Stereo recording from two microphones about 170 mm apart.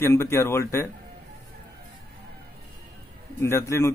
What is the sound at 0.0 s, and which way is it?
Speech, 15° left (ahead or behind).